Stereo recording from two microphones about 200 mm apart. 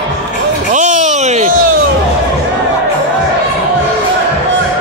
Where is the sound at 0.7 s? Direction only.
40° right (ahead or behind).